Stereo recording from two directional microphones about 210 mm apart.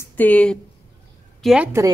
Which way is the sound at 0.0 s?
10° left (ahead or behind).